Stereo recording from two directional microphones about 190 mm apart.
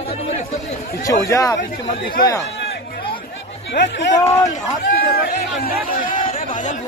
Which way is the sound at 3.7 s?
65° left (ahead or behind).